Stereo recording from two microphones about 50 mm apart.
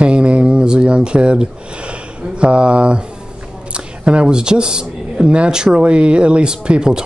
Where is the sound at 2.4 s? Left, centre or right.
Right.